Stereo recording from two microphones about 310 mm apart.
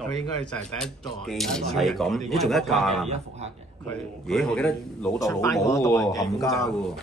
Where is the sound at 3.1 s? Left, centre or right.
Right.